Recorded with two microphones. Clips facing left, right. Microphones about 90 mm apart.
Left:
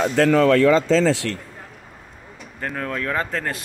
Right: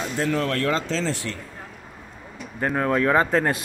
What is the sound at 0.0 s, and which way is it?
Speech, 90° left.